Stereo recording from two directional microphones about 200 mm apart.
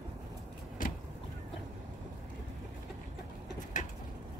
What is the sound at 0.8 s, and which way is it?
Vehicle, 45° left (ahead or behind).